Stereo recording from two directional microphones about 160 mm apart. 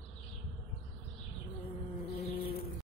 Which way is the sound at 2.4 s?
70° left (ahead or behind).